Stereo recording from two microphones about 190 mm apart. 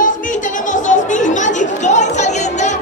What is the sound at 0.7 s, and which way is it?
Chatter, 40° left (ahead or behind).